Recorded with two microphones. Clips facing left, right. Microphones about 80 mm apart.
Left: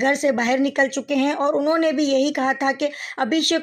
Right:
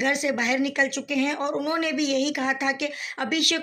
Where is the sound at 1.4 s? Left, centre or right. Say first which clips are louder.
Left 7 dB; left.